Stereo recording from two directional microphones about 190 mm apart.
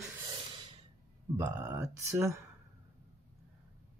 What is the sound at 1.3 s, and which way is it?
Speech, 10° right (ahead or behind).